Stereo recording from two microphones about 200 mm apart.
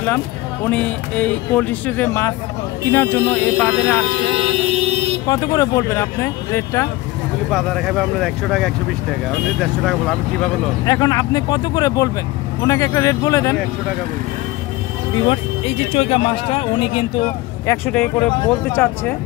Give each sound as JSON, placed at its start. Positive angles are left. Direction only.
{"t": 0.7, "sound": "speech", "side_deg": 5}
{"t": 5.2, "sound": "speech", "side_deg": 20}
{"t": 7.5, "sound": "speech", "side_deg": 0}
{"t": 10.9, "sound": "speech", "side_deg": 20}
{"t": 15.2, "sound": "speech", "side_deg": 30}
{"t": 17.6, "sound": "speech", "side_deg": 10}